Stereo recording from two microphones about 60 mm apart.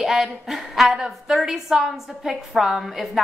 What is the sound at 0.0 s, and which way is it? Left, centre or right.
A woman's voice, centre.